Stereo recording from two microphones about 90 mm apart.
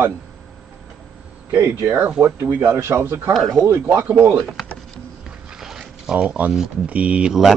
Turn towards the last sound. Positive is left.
turn(degrees=-5)  # may be behind; listen again after turning